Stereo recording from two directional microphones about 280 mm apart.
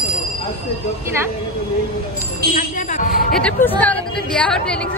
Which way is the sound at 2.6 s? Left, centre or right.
Left.